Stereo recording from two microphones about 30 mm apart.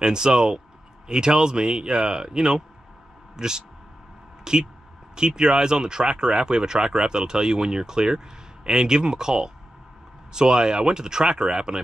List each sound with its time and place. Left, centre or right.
0.0 s speech: right